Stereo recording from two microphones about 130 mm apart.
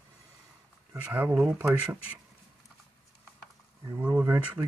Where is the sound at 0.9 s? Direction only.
15° right (ahead or behind).